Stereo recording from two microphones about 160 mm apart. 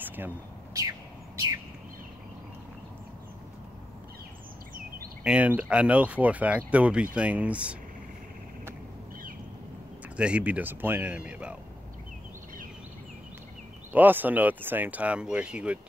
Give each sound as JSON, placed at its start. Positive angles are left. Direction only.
{"t": 0.0, "sound": "bird", "side_deg": -10}
{"t": 5.2, "sound": "speech", "side_deg": -10}
{"t": 10.1, "sound": "speech", "side_deg": -5}
{"t": 13.9, "sound": "speech", "side_deg": -10}